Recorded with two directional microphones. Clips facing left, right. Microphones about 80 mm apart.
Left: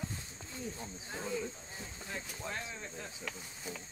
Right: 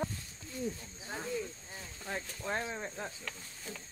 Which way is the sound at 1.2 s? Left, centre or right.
Left.